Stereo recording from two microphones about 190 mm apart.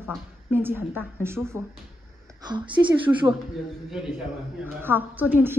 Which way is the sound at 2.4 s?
25° right (ahead or behind).